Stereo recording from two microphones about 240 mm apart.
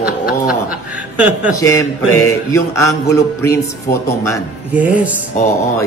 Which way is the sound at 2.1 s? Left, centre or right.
Centre.